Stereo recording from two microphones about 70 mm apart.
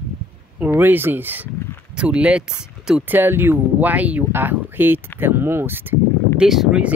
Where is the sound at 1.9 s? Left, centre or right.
Centre.